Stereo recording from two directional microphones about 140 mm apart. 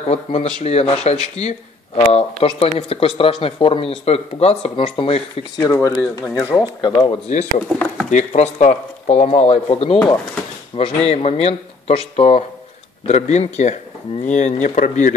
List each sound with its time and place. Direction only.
0.0 s speech: 50° left (ahead or behind)
5.6 s speech: 20° left (ahead or behind)
6.8 s speech: 30° left (ahead or behind)
7.2 s speech: 60° left (ahead or behind)